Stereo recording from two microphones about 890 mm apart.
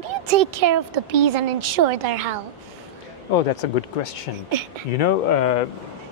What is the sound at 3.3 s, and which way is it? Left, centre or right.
Speech, left.